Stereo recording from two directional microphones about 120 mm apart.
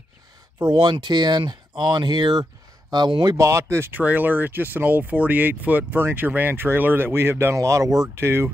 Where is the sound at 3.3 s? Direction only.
25° right (ahead or behind).